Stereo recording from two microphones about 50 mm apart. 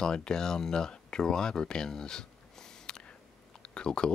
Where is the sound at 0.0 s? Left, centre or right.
Centre.